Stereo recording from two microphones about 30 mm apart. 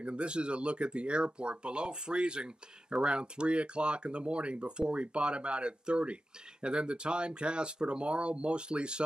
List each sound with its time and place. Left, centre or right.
0.0 s speech: right